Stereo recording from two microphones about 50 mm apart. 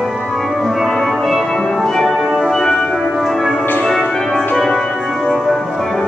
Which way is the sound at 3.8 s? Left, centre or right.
Centre.